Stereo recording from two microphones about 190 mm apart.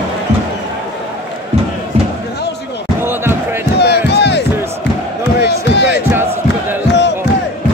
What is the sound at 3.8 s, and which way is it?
Crowd, 60° left (ahead or behind).